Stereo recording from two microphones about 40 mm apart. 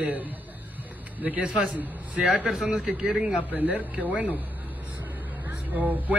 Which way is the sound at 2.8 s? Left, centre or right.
Right.